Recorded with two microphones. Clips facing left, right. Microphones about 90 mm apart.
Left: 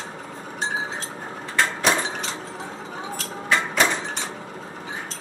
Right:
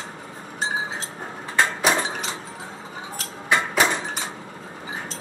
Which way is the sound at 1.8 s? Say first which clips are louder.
Even; 5° right (ahead or behind).